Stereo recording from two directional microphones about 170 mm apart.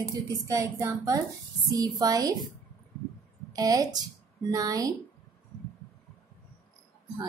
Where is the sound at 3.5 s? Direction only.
20° right (ahead or behind).